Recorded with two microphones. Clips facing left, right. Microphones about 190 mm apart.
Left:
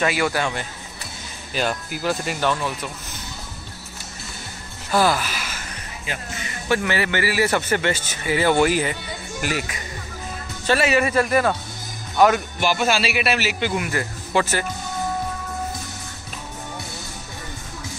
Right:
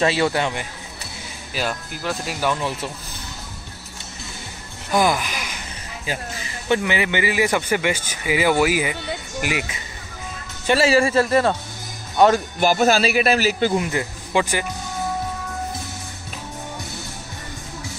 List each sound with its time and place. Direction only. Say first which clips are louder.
0.0 s a man's voice: right 2 dB; 25° right (ahead or behind)
1.5 s speech: left 2 dB; centre (ahead or behind)
4.9 s a sound: even; 15° right (ahead or behind)
6.7 s a man's voice: right 1 dB; 15° right (ahead or behind)
10.7 s a man's voice: right 2 dB; 30° right (ahead or behind)
12.5 s speech: right 4 dB; 40° right (ahead or behind)
13.8 s a man's voice: right 1 dB; 15° right (ahead or behind)